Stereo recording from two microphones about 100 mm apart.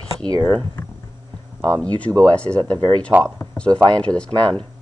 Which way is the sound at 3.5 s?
10° left (ahead or behind).